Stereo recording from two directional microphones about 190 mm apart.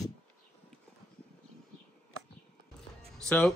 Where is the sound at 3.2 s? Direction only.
5° left (ahead or behind).